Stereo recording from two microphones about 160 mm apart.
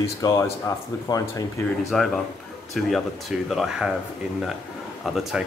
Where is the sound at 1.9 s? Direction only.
5° left (ahead or behind).